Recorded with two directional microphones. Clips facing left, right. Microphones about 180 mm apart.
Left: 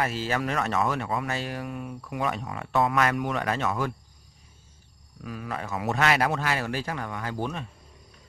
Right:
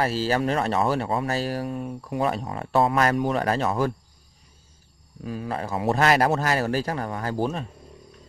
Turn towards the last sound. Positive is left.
turn(degrees=-35)  # may be behind; listen again after turning